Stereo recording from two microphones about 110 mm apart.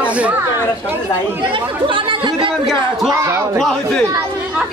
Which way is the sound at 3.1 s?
30° right (ahead or behind).